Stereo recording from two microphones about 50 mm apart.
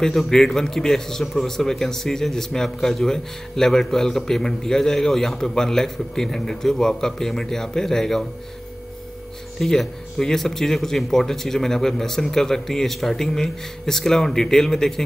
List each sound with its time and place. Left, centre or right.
0.2 s a man's voice: centre
9.6 s a man's voice: centre